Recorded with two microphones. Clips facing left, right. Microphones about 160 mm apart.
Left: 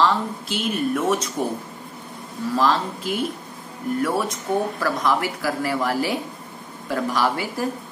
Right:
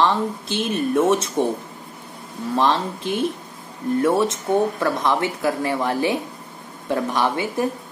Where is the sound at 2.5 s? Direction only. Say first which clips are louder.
Right 1 dB; 25° right (ahead or behind).